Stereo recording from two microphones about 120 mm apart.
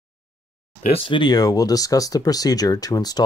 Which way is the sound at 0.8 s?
50° left (ahead or behind).